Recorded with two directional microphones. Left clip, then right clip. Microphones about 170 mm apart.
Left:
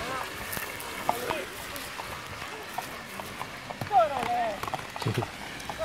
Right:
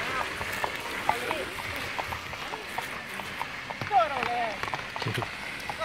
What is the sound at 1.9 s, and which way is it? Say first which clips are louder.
Run: right 4 dB; centre (ahead or behind).